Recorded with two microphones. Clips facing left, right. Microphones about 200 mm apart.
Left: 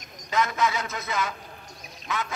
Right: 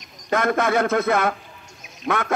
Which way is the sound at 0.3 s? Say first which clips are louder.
Right 6 dB; 55° right (ahead or behind).